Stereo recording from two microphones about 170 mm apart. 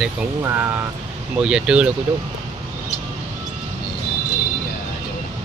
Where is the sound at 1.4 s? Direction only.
5° right (ahead or behind).